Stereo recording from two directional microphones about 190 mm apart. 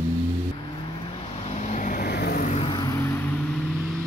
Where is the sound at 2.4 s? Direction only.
35° left (ahead or behind).